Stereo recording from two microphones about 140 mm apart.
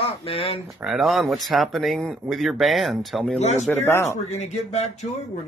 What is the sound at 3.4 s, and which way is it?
Speech, 55° left (ahead or behind).